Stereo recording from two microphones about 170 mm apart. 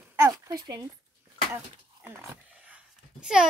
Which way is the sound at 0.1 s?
15° right (ahead or behind).